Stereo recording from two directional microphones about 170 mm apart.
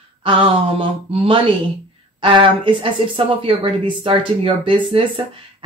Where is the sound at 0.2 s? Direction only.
30° right (ahead or behind).